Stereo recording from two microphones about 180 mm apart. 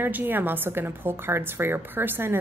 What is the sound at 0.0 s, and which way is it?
A woman's voice, 10° right (ahead or behind).